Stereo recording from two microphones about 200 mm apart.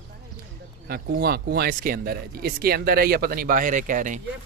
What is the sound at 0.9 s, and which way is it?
Speech, 50° right (ahead or behind).